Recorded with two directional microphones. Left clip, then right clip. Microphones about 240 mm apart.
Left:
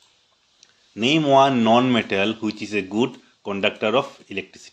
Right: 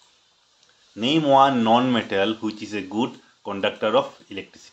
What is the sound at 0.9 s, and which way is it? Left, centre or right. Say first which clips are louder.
Speech: left 1 dB; left.